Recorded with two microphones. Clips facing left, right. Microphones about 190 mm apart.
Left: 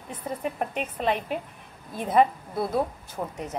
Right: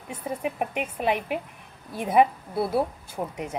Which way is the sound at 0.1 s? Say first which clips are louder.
Right 1 dB; 10° right (ahead or behind).